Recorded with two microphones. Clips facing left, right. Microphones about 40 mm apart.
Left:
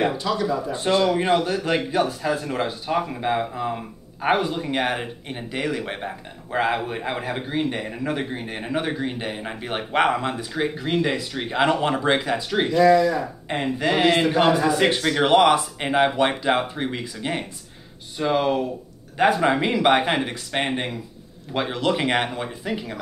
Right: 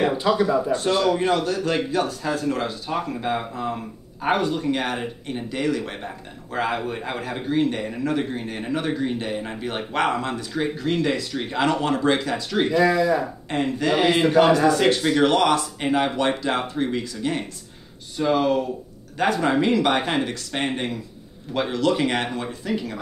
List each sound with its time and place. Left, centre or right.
0.1 s speech: centre
0.7 s speech: centre
12.8 s speech: centre
13.5 s speech: centre
14.0 s a man's voice: centre
14.7 s speech: centre